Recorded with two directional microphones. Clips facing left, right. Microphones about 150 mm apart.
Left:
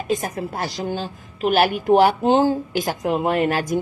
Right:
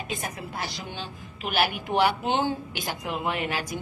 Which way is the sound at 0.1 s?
40° left (ahead or behind).